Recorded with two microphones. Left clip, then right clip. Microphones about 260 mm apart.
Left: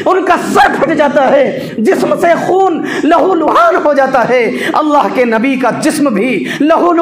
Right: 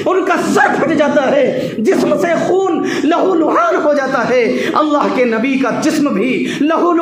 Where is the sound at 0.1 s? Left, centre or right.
Left.